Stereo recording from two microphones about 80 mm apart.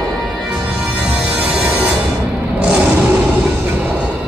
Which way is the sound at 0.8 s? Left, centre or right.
Centre.